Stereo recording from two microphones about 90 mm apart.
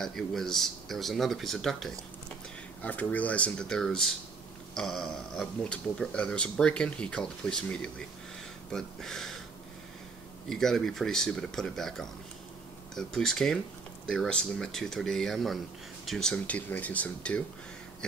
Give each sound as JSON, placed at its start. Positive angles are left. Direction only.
{"t": 0.0, "sound": "speech", "side_deg": 5}
{"t": 2.8, "sound": "speech", "side_deg": 20}
{"t": 10.5, "sound": "speech", "side_deg": 5}
{"t": 16.4, "sound": "speech", "side_deg": 15}